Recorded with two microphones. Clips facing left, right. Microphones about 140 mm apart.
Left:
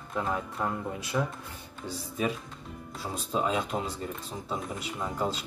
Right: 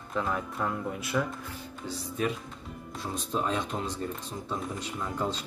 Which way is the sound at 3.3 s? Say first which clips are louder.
Left 2 dB; 5° left (ahead or behind).